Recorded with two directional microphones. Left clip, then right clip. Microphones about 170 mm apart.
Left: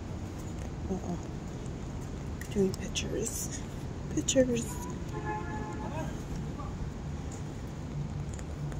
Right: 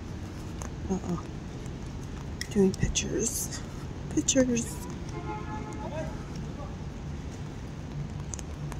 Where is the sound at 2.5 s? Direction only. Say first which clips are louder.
Right 4 dB; 25° right (ahead or behind).